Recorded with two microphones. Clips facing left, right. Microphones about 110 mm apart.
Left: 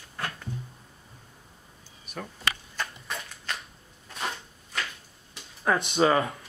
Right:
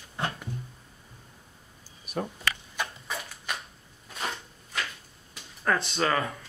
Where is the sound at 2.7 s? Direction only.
10° right (ahead or behind).